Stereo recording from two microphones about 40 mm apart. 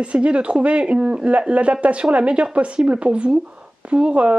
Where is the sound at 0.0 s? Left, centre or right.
Right.